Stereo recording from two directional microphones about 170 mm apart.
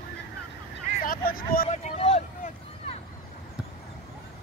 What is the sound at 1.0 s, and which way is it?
Vehicle, 55° left (ahead or behind).